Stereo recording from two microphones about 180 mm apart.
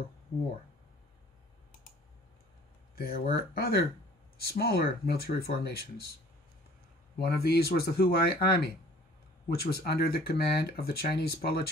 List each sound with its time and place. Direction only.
3.0 s speech: 55° left (ahead or behind)
7.2 s speech: 60° left (ahead or behind)